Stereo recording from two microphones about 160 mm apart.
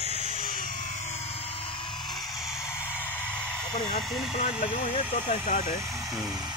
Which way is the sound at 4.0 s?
Centre (ahead or behind).